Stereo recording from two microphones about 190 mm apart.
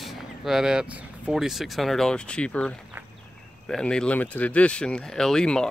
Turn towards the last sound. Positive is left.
turn(degrees=5)  # may be behind; listen again after turning